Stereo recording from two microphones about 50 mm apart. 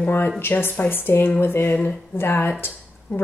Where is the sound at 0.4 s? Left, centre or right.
Left.